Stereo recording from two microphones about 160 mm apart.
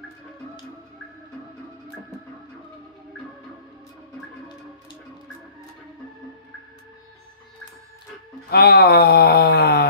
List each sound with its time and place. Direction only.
8.5 s speech: 80° left